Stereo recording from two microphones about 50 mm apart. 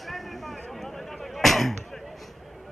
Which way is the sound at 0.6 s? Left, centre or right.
Centre.